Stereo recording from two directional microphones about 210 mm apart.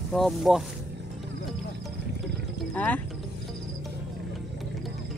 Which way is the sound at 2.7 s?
5° left (ahead or behind).